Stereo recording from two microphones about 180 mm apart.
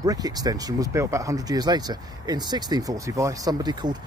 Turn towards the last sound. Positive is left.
turn(degrees=-20)  # may be behind; listen again after turning